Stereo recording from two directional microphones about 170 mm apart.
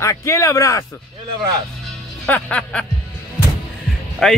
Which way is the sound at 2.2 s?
10° left (ahead or behind).